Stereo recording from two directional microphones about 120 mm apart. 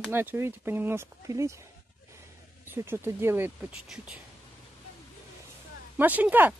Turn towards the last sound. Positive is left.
turn(degrees=-15)  # may be behind; listen again after turning